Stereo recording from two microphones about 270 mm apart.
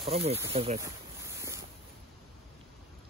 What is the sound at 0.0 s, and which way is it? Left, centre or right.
Speech, right.